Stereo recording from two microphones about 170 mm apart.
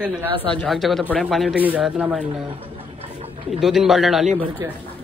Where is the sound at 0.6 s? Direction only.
Centre (ahead or behind).